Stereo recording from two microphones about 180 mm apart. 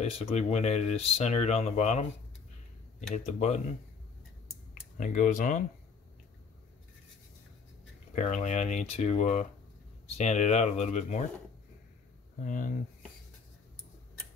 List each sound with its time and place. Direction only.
0.0 s speech: 35° left (ahead or behind)
3.3 s speech: 40° left (ahead or behind)
4.9 s speech: 45° left (ahead or behind)
8.1 s speech: 40° left (ahead or behind)
12.4 s speech: 45° left (ahead or behind)